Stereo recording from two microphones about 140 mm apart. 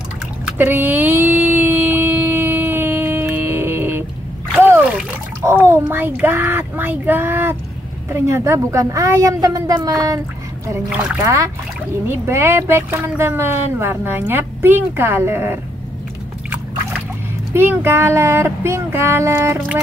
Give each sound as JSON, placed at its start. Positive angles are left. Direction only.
{"t": 0.5, "sound": "a sound", "side_deg": -15}
{"t": 4.6, "sound": "splash", "side_deg": -15}
{"t": 5.4, "sound": "child singing", "side_deg": -15}
{"t": 8.1, "sound": "speech", "side_deg": -20}
{"t": 11.2, "sound": "speech", "side_deg": -20}
{"t": 17.6, "sound": "speech", "side_deg": -15}